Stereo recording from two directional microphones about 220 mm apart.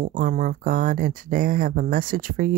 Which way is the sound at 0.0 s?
40° right (ahead or behind).